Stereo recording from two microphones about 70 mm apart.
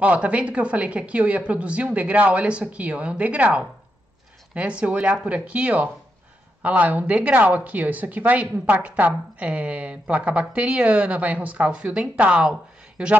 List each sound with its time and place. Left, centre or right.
0.0 s speech: centre